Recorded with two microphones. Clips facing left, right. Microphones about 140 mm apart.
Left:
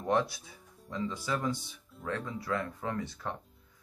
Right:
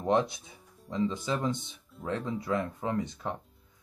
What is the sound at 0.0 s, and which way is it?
Speech, 20° right (ahead or behind).